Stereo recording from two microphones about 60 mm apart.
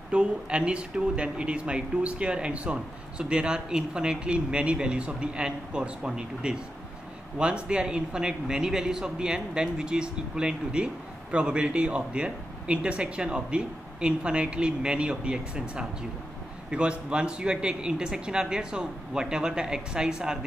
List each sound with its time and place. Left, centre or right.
0.1 s speech: centre